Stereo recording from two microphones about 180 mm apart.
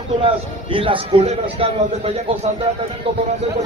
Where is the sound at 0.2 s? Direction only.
30° right (ahead or behind).